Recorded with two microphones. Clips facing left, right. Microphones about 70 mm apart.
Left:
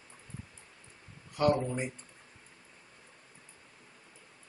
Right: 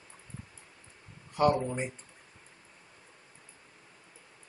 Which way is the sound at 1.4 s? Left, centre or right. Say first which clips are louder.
Right 2 dB; right.